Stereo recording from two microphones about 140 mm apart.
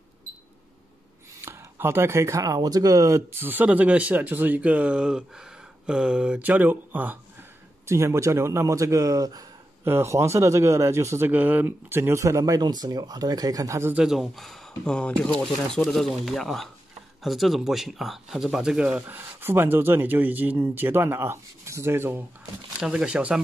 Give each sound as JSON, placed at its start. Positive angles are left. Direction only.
{"t": 1.4, "sound": "speech", "side_deg": -20}
{"t": 13.9, "sound": "speech", "side_deg": -5}
{"t": 22.8, "sound": "speech", "side_deg": -5}